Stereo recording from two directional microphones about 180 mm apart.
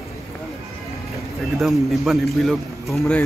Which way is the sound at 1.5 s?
Centre (ahead or behind).